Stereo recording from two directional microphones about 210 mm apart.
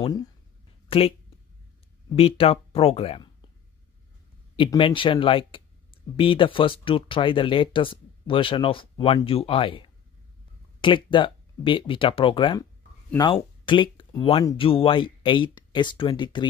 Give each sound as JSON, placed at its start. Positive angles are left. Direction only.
{"t": 0.0, "sound": "speech", "side_deg": 20}
{"t": 2.1, "sound": "speech", "side_deg": 25}
{"t": 4.6, "sound": "speech", "side_deg": 25}